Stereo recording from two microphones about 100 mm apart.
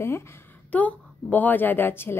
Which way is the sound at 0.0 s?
25° left (ahead or behind).